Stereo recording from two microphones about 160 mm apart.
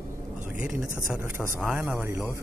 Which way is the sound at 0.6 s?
5° right (ahead or behind).